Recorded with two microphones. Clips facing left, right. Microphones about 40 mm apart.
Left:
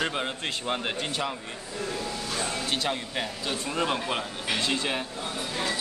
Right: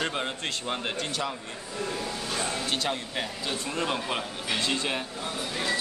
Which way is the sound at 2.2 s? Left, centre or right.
Centre.